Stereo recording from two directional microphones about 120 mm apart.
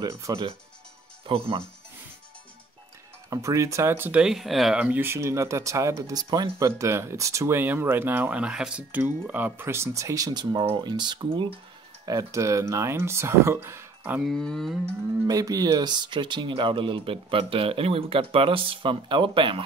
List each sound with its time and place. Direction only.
0.0 s speech: 25° right (ahead or behind)
1.2 s speech: 50° right (ahead or behind)
3.3 s speech: 25° right (ahead or behind); by 4.7 s centre (ahead or behind)
4.7 s speech: 15° right (ahead or behind); by 11.6 s 40° right (ahead or behind)
12.1 s speech: 25° right (ahead or behind)
14.2 s speech: 5° left (ahead or behind)
15.2 s speech: 30° right (ahead or behind)